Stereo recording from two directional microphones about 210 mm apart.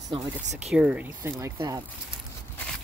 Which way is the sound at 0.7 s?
5° right (ahead or behind).